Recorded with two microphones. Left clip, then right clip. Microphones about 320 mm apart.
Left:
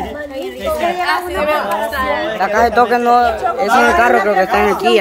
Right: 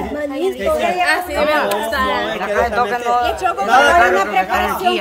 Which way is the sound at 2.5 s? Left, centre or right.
Left.